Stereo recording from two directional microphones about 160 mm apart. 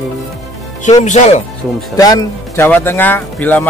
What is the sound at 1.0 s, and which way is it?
Speech, 45° left (ahead or behind).